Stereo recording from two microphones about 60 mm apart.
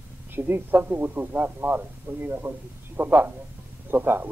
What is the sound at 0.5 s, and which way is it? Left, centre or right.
A man's voice, right.